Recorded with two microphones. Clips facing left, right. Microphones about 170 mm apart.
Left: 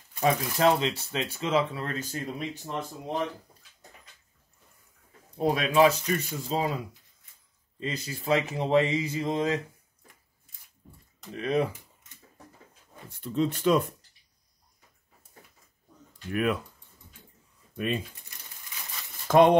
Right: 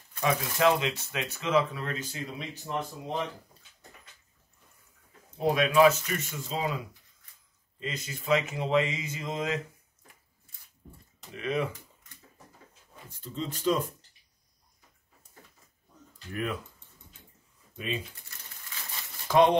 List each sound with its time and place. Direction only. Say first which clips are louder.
0.2 s speech: left 2 dB; 35° left (ahead or behind)
5.4 s speech: even; 35° left (ahead or behind)
7.8 s speech: left 3 dB; 35° left (ahead or behind)
11.3 s speech: left 4 dB; 35° left (ahead or behind)
13.1 s speech: left 9 dB; 65° left (ahead or behind)
16.3 s speech: left 6 dB; 70° left (ahead or behind)
17.7 s speech: left 5 dB; 60° left (ahead or behind)
19.2 s a sound: left 3 dB; 50° left (ahead or behind)